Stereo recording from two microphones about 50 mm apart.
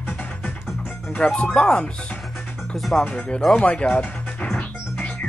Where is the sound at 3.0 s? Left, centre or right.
Centre.